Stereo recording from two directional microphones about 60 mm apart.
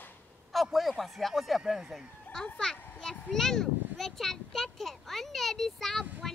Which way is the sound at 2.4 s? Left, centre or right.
Centre.